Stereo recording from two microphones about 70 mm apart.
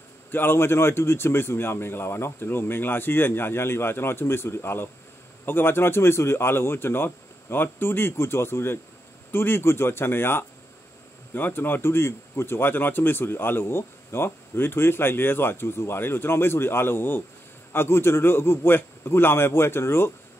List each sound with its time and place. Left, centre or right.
0.3 s speech: left